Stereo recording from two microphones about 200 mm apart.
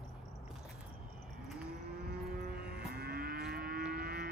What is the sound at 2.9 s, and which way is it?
Moo, 50° right (ahead or behind).